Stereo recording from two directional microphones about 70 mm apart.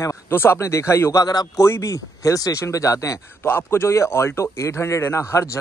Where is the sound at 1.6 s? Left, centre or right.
Left.